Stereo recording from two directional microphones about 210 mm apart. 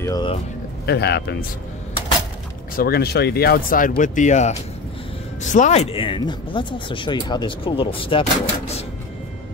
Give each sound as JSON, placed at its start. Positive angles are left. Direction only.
{"t": 0.0, "sound": "a man's voice", "side_deg": 15}
{"t": 0.8, "sound": "speech", "side_deg": 50}
{"t": 2.8, "sound": "speech", "side_deg": 50}